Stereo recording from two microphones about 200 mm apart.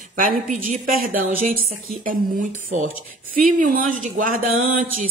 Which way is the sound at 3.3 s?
45° right (ahead or behind).